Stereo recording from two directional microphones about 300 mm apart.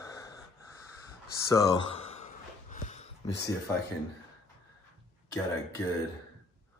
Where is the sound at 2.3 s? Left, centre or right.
Left.